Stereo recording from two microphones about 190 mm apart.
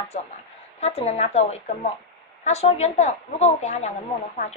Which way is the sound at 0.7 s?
35° left (ahead or behind).